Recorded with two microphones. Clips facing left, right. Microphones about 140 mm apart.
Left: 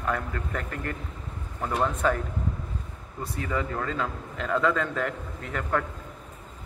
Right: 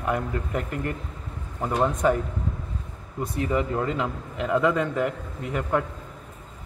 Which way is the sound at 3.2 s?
20° right (ahead or behind).